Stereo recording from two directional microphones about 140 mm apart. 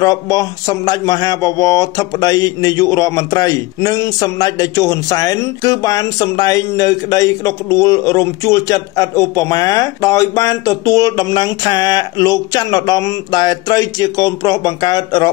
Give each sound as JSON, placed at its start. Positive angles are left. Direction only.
{"t": 0.0, "sound": "speech", "side_deg": 25}